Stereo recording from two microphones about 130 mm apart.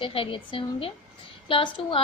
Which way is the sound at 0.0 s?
45° left (ahead or behind).